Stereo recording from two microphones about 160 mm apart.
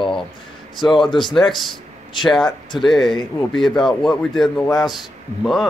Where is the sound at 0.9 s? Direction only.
Centre (ahead or behind).